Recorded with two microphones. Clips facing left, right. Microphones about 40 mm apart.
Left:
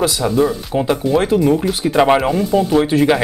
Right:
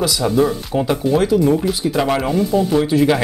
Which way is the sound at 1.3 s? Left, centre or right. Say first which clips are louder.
Left 1 dB; left.